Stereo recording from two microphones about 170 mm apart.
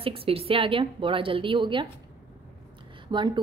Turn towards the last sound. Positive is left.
turn(degrees=-30)  # may be behind; listen again after turning